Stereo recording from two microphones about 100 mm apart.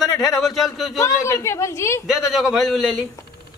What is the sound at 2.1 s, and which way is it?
Speech, centre (ahead or behind).